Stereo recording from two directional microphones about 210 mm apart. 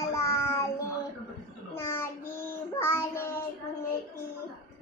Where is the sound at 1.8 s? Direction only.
10° left (ahead or behind).